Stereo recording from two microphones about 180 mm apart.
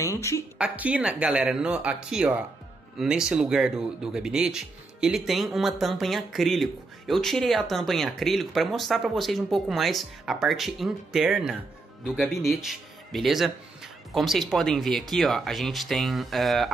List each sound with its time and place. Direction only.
0.0 s speech: 15° left (ahead or behind)
0.6 s speech: 5° right (ahead or behind)